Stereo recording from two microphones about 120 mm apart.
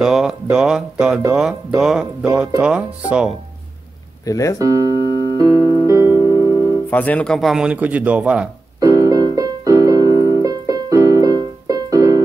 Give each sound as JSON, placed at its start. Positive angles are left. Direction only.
{"t": 0.0, "sound": "speech", "side_deg": -5}
{"t": 4.3, "sound": "speech", "side_deg": 25}
{"t": 4.6, "sound": "speech", "side_deg": -30}
{"t": 4.9, "sound": "music", "side_deg": 35}
{"t": 6.9, "sound": "speech", "side_deg": 15}
{"t": 7.3, "sound": "speech", "side_deg": -5}
{"t": 8.7, "sound": "music", "side_deg": -30}